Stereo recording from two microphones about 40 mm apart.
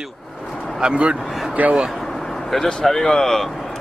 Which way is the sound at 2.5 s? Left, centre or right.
Centre.